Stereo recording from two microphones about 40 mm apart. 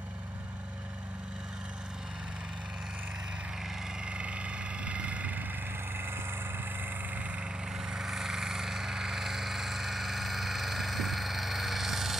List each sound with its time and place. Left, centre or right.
4.0 s vehicle: right
5.9 s vehicle: right
7.7 s a sound: centre